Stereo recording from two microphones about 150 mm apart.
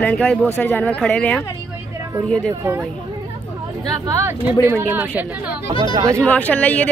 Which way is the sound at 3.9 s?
20° right (ahead or behind).